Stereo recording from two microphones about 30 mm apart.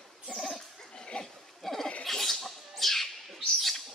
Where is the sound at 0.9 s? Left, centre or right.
Left.